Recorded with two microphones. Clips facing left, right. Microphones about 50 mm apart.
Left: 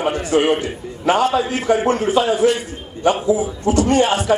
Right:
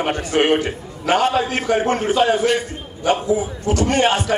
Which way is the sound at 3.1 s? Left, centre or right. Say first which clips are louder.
Left 1 dB; right.